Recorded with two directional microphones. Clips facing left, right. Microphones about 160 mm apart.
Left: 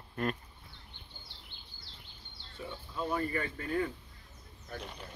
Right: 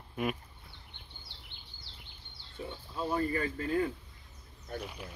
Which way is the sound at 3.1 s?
30° right (ahead or behind).